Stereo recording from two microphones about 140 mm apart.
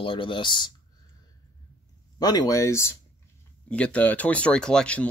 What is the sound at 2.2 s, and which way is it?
Speech, 30° left (ahead or behind).